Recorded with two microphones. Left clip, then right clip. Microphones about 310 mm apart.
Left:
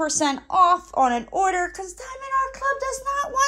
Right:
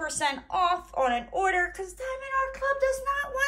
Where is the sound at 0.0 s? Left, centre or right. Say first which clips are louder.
Left 6 dB; centre.